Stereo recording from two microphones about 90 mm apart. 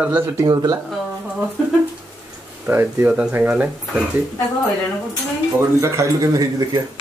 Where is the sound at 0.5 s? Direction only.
50° right (ahead or behind).